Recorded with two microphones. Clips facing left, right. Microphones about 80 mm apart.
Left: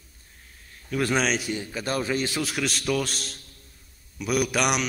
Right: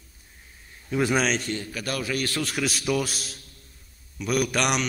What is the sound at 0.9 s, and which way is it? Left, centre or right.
Speech, centre.